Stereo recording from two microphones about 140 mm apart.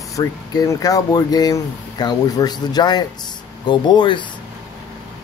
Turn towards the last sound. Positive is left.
turn(degrees=35)  # may be behind; listen again after turning